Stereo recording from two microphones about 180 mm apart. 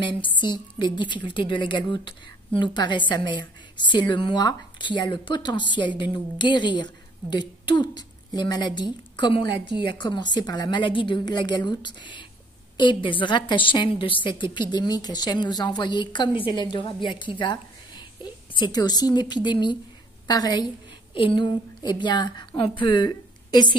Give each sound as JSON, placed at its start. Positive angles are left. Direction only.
{"t": 0.0, "sound": "a woman's voice", "side_deg": 25}
{"t": 9.5, "sound": "a woman's voice", "side_deg": -70}
{"t": 9.9, "sound": "a woman's voice", "side_deg": 25}